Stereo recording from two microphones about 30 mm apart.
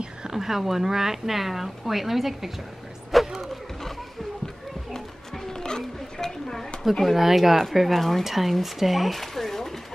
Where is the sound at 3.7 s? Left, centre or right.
Centre.